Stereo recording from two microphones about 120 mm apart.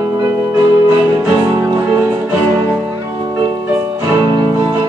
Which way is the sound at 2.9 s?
30° right (ahead or behind).